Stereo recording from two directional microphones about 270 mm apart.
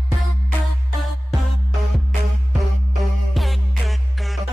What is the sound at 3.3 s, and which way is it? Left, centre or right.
Music, centre.